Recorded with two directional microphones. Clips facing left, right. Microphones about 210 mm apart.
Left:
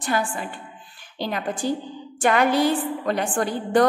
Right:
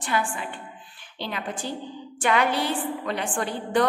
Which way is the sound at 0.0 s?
40° left (ahead or behind).